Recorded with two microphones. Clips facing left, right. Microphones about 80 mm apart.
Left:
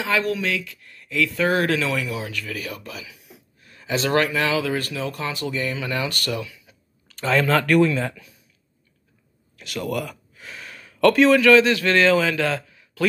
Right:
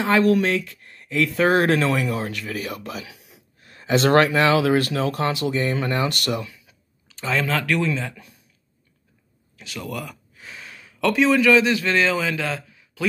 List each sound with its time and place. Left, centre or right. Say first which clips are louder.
0.0 s speech: right 5 dB; right
2.4 s speech: right 2 dB; right
3.6 s a sound: right 3 dB; right
4.0 s speech: right 4 dB; right
5.4 s speech: right 4 dB; right
5.9 s speech: right 2 dB; right
7.5 s speech: left 5 dB; centre
9.8 s a sound: left 5 dB; centre
11.1 s a man's voice: left 1 dB; centre